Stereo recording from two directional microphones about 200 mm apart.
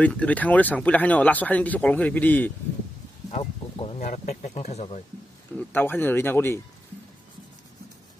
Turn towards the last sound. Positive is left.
turn(degrees=10)  # may be behind; listen again after turning